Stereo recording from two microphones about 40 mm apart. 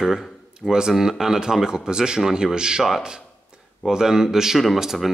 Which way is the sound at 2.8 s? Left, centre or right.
Centre.